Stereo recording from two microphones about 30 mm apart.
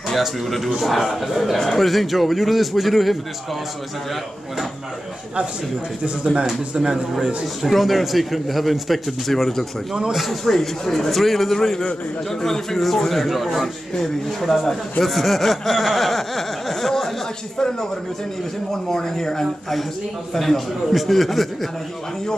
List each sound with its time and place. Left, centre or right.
0.7 s a man's voice: centre
6.8 s speech: centre
7.6 s a man's voice: centre
13.3 s a man's voice: centre
18.7 s a man's voice: centre